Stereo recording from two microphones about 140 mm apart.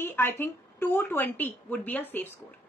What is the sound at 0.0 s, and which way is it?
A woman's voice, 15° left (ahead or behind).